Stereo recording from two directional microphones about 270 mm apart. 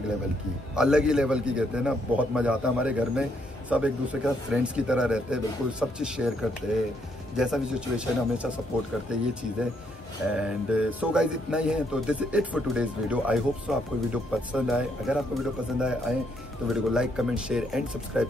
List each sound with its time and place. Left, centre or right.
0.7 s a man's voice: centre